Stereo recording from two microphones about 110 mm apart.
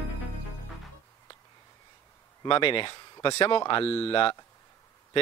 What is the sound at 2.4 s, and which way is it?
Speech, 50° left (ahead or behind).